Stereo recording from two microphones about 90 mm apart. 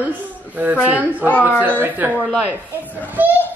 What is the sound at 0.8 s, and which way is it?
A woman's voice, 15° right (ahead or behind).